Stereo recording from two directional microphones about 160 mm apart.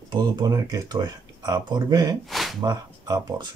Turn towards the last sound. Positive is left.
turn(degrees=-25)  # may be behind; listen again after turning